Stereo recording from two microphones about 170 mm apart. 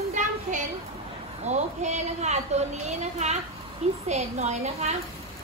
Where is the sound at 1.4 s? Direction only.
40° right (ahead or behind).